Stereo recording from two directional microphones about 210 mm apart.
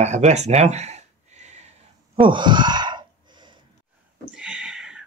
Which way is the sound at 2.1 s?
25° right (ahead or behind).